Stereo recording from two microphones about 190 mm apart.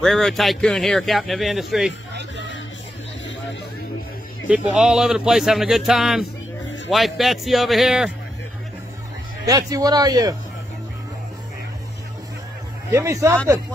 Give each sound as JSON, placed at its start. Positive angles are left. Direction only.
{"t": 0.0, "sound": "a man's voice", "side_deg": 0}
{"t": 2.1, "sound": "music", "side_deg": -65}
{"t": 4.5, "sound": "a man's voice", "side_deg": -5}
{"t": 9.5, "sound": "speech", "side_deg": -20}
{"t": 12.9, "sound": "speech", "side_deg": -15}